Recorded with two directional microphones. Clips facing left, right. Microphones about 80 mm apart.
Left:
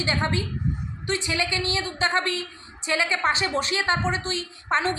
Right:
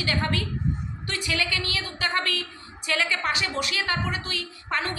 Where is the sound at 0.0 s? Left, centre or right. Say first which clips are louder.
Left 2 dB; left.